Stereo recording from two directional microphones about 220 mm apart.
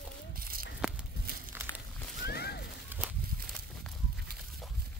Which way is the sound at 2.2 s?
45° left (ahead or behind).